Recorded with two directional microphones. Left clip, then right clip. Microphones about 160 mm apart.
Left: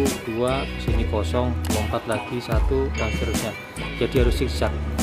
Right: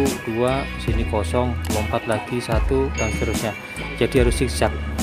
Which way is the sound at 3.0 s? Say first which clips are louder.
Right 2 dB; centre (ahead or behind).